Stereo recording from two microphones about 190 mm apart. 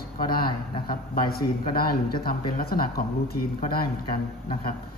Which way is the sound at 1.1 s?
50° left (ahead or behind).